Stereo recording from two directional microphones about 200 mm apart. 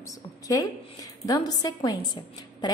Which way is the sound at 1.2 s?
20° left (ahead or behind).